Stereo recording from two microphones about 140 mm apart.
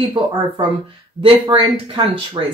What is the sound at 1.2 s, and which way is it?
Speech, 40° right (ahead or behind).